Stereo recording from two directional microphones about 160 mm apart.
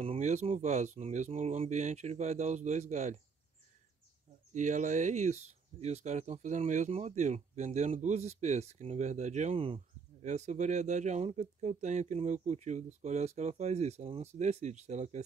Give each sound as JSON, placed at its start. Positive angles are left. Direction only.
{"t": 0.0, "sound": "speech", "side_deg": -40}
{"t": 4.6, "sound": "speech", "side_deg": -50}